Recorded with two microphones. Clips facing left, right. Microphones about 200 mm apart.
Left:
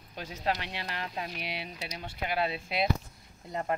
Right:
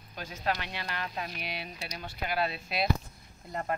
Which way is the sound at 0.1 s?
30° left (ahead or behind).